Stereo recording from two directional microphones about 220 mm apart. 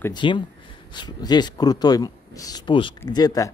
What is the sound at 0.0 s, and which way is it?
Speech, 20° left (ahead or behind).